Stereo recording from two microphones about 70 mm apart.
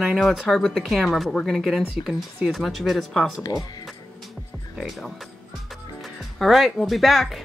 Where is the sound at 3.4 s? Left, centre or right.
Left.